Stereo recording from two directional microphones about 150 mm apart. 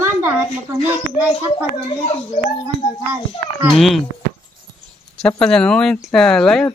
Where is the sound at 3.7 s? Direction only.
Centre (ahead or behind).